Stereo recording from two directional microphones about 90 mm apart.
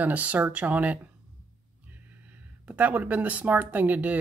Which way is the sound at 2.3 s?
15° right (ahead or behind).